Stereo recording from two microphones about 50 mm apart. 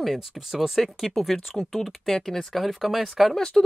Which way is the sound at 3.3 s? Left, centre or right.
Centre.